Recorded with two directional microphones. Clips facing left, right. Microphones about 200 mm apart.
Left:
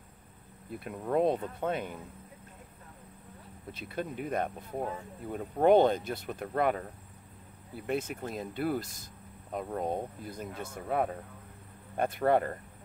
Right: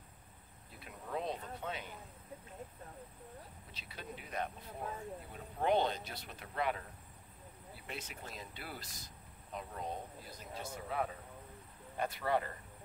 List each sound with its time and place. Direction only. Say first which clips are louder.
0.7 s speech: left 12 dB; 55° left (ahead or behind)
3.7 s speech: left 13 dB; 50° left (ahead or behind)